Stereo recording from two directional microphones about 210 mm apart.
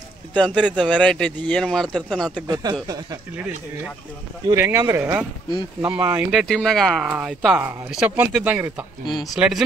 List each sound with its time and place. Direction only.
0.3 s speech: 5° left (ahead or behind)
2.4 s speech: 20° right (ahead or behind)
4.5 s speech: 10° right (ahead or behind)